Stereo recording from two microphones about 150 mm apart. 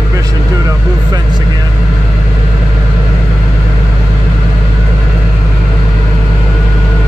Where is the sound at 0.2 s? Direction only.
25° right (ahead or behind).